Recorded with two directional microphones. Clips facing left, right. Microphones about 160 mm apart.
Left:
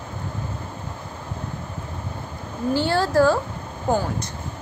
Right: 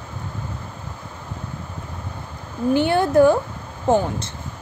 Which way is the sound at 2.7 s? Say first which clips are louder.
Right 3 dB; 20° right (ahead or behind).